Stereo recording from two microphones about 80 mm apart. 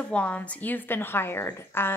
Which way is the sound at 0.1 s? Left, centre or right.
Centre.